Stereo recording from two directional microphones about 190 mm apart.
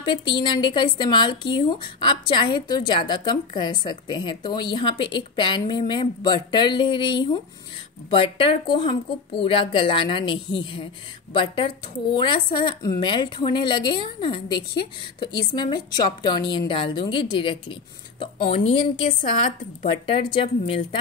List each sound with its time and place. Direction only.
0.0 s a woman's voice: 25° left (ahead or behind)